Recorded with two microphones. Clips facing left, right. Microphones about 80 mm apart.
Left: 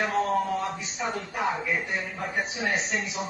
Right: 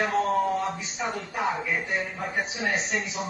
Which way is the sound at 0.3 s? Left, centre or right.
Centre.